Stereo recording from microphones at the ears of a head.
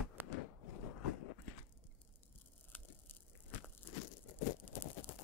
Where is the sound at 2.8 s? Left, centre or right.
Left.